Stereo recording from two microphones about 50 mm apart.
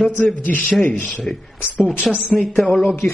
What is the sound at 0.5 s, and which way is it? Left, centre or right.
Speech, left.